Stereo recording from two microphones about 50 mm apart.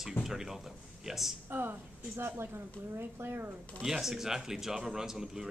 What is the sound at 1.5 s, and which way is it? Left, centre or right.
A woman's voice, right.